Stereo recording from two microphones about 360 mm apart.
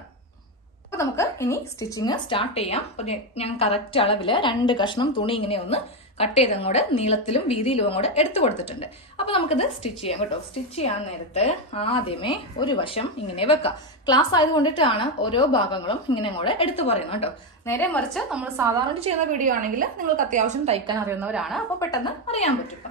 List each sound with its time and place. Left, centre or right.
0.9 s a woman's voice: centre
18.9 s a woman's voice: centre